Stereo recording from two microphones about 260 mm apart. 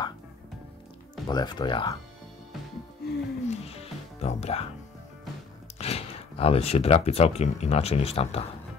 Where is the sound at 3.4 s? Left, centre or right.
Left.